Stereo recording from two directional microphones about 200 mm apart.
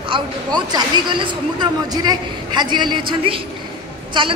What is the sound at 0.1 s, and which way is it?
Speech, 20° right (ahead or behind).